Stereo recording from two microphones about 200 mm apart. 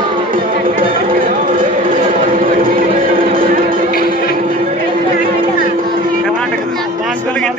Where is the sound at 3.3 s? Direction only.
45° right (ahead or behind).